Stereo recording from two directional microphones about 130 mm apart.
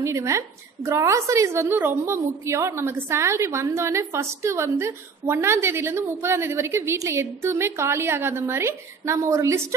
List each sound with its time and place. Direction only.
0.0 s a woman's voice: 25° right (ahead or behind)